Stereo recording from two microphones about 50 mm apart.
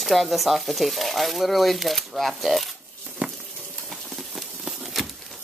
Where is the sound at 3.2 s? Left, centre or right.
Right.